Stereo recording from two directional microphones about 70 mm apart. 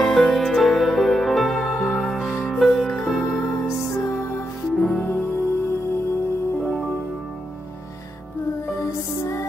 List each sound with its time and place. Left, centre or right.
0.0 s music: centre
5.0 s music: left
6.6 s music: centre
8.7 s music: left